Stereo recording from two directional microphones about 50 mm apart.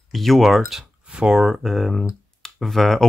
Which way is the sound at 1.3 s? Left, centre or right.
Centre.